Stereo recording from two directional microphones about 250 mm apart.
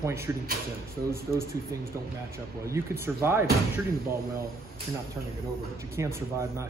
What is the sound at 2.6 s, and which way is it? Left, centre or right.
Speech, centre.